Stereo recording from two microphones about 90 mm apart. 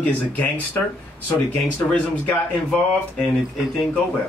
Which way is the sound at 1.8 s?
20° left (ahead or behind).